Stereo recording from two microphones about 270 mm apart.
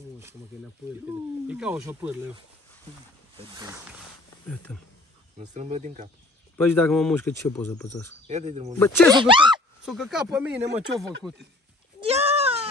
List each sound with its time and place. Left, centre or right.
1.0 s speech: centre
4.7 s speech: centre
5.4 s speech: right
6.6 s a man's voice: centre
8.3 s speech: right
8.7 s a man's voice: centre
9.1 s speech: centre
9.8 s speech: centre
12.0 s sheep: right